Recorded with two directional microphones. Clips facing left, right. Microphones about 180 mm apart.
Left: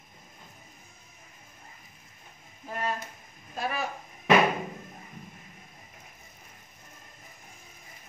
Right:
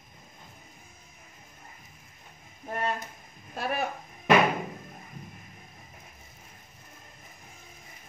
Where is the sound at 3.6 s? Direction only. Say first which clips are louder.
Right 1 dB; 60° right (ahead or behind).